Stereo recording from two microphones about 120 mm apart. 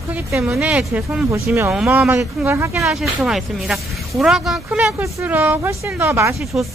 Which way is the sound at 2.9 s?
5° right (ahead or behind).